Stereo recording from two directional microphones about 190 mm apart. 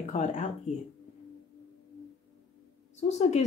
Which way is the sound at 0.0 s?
40° left (ahead or behind).